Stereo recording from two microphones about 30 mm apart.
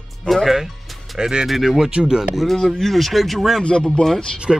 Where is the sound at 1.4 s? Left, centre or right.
Centre.